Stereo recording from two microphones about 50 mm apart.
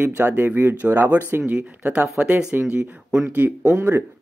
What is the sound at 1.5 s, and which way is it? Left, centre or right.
Speech, right.